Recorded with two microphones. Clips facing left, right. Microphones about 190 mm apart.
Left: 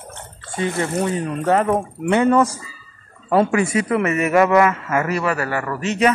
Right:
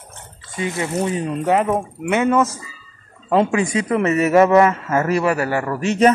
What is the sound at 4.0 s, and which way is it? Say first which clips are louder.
Speech: right 2 dB; 35° right (ahead or behind).